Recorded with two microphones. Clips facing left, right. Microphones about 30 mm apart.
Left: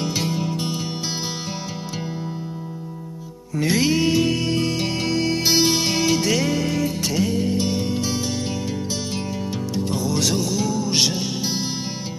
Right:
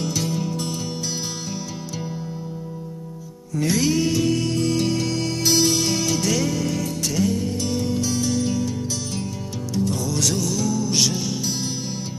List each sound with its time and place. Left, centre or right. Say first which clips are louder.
0.0 s music: left 1 dB; left
3.5 s music: left 1 dB; left
9.8 s music: even; left